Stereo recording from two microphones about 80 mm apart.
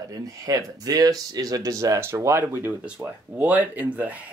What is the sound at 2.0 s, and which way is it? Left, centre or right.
Speech, right.